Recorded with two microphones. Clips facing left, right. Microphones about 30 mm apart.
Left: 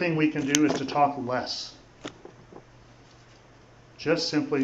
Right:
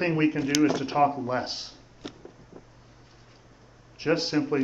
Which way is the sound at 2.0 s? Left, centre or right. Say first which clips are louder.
Left 1 dB; left.